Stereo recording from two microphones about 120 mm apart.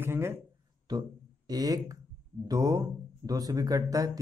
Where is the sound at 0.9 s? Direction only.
35° right (ahead or behind).